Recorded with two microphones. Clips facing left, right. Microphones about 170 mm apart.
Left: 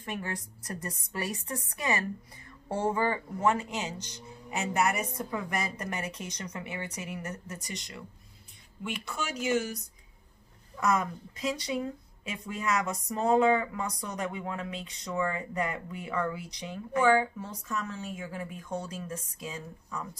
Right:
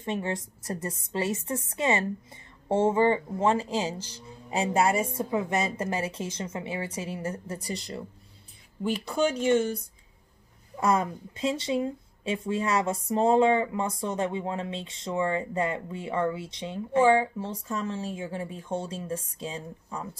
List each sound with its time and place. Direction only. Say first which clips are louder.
0.0 s speech: right 6 dB; 25° right (ahead or behind)
10.8 s speech: right 3 dB; 30° right (ahead or behind)